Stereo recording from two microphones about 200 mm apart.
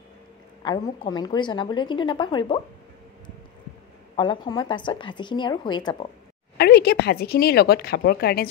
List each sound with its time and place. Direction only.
0.6 s a woman's voice: 20° left (ahead or behind)
4.2 s a woman's voice: 25° left (ahead or behind)
6.6 s a woman's voice: 55° left (ahead or behind)